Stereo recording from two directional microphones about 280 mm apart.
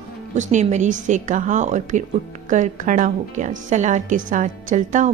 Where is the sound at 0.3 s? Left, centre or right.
Right.